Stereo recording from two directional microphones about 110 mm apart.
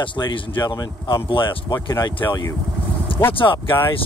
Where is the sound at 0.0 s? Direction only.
40° left (ahead or behind).